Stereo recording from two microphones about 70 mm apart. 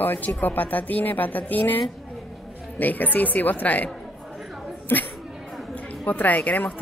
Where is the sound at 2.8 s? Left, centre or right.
Left.